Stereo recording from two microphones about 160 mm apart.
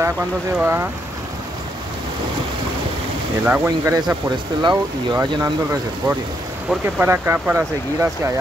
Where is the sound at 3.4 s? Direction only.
10° right (ahead or behind).